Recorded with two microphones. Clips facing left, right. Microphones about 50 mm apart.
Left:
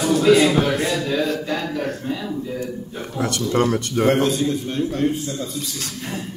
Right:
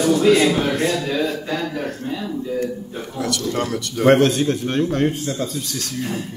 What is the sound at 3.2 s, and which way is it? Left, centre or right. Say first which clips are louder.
Speech: left 3 dB; left.